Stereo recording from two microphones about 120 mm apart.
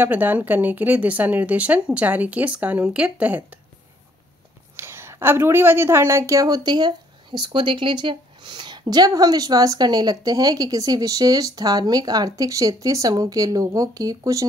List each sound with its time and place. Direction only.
0.0 s speech: 15° right (ahead or behind)
4.7 s a woman's voice: 20° right (ahead or behind)